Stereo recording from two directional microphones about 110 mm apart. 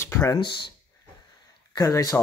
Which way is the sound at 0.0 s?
25° left (ahead or behind).